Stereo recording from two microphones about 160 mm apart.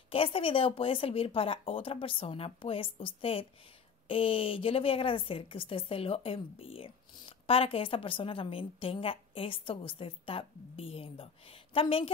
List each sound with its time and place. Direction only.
0.1 s a woman's voice: 35° left (ahead or behind)